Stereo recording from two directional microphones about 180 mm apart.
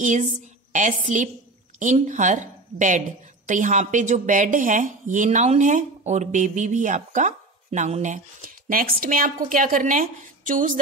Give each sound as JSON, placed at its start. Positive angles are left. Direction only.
{"t": 0.0, "sound": "a woman's voice", "side_deg": -45}